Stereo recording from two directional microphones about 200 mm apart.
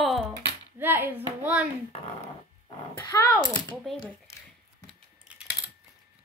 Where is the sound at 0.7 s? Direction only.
10° right (ahead or behind).